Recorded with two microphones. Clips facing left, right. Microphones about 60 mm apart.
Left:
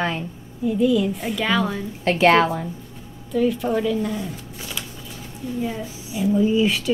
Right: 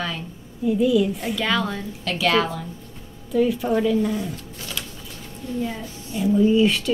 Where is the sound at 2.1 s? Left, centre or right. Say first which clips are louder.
Left 5 dB; left.